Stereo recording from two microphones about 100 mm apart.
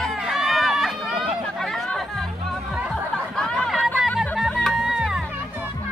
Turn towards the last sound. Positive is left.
turn(degrees=-5)  # may be behind; listen again after turning